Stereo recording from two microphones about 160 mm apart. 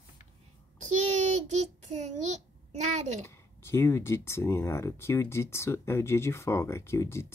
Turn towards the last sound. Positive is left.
turn(degrees=15)  # may be behind; listen again after turning